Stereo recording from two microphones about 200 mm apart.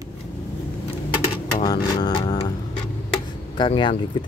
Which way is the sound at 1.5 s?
20° left (ahead or behind).